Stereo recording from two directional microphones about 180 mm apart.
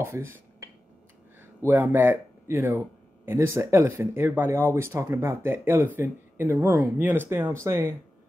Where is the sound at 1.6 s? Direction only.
10° right (ahead or behind).